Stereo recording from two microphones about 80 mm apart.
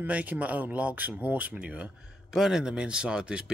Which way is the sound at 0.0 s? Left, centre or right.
Centre.